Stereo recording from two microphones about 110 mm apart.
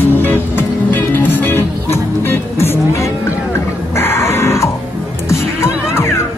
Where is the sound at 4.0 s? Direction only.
25° left (ahead or behind).